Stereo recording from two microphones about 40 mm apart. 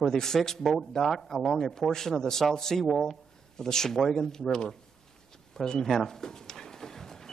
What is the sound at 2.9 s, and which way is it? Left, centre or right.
Speech, centre.